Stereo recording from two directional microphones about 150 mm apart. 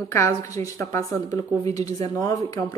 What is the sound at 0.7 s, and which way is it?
Speech, 20° left (ahead or behind).